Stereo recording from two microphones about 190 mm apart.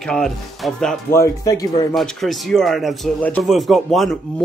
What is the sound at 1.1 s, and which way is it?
Speech, 15° left (ahead or behind).